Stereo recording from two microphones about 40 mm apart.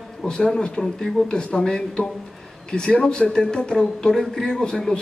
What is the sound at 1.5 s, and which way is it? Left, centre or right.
A man's voice, centre.